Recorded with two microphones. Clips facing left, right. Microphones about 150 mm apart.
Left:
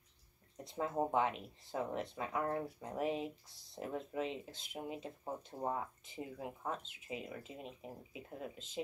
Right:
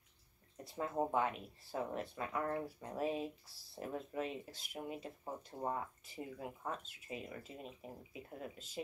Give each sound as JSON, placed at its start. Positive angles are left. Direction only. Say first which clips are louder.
{"t": 0.7, "sound": "speech", "louder": "left 1 dB", "side_deg": 20}